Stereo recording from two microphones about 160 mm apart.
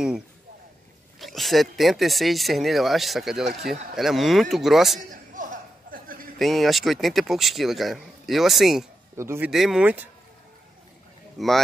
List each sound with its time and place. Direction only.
1.2 s speech: centre (ahead or behind)
5.1 s a sound: 55° right (ahead or behind)
6.3 s speech: centre (ahead or behind)
9.1 s speech: 15° right (ahead or behind)
9.5 s speech: 5° right (ahead or behind)
11.3 s speech: centre (ahead or behind)